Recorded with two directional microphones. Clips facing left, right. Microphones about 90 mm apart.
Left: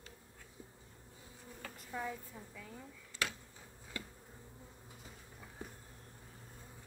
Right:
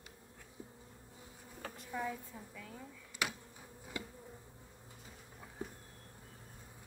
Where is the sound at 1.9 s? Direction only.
Centre (ahead or behind).